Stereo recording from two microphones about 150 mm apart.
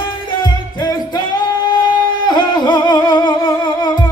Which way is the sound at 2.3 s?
30° left (ahead or behind).